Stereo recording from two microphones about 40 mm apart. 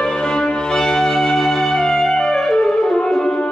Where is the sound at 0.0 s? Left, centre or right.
Left.